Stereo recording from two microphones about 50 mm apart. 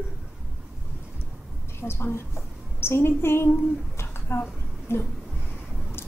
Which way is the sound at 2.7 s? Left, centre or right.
Left.